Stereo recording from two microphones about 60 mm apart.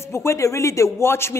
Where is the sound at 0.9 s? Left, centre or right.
Left.